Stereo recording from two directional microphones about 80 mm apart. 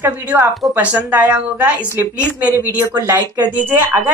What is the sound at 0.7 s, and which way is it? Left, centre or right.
A woman's voice, centre.